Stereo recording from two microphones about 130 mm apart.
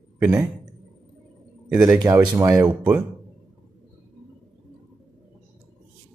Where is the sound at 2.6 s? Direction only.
10° right (ahead or behind).